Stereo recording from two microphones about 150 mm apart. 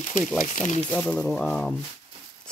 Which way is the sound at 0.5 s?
50° left (ahead or behind).